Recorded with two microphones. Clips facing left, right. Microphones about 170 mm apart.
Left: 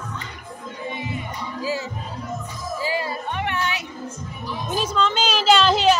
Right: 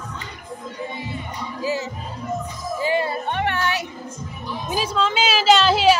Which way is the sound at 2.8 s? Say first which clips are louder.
Right 5 dB; 25° right (ahead or behind).